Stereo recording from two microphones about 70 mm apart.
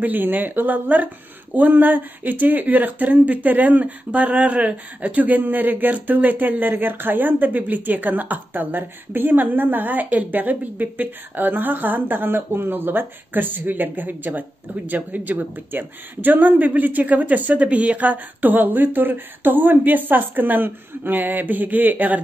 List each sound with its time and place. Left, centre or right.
0.0 s speech: right